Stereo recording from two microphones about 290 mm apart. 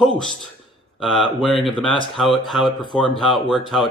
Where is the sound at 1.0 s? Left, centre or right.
Centre.